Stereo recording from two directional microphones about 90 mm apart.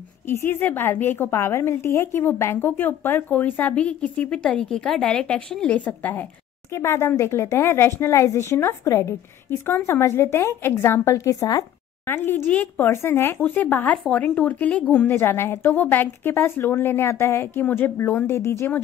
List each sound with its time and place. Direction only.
0.3 s a woman's voice: 25° left (ahead or behind)
12.1 s a woman's voice: 25° left (ahead or behind)